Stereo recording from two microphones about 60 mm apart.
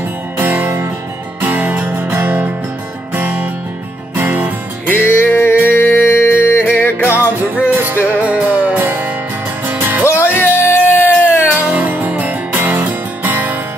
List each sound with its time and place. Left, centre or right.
0.4 s music: right
1.4 s music: right
4.8 s music: left
7.1 s music: right
10.0 s music: left
10.9 s a sound: left
11.5 s music: right